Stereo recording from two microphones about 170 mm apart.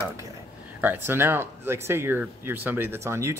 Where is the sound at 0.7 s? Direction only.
10° right (ahead or behind).